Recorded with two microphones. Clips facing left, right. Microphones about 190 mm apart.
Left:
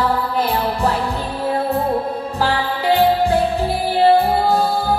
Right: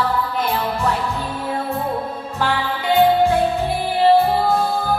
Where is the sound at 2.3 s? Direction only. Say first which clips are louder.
Even; 35° left (ahead or behind).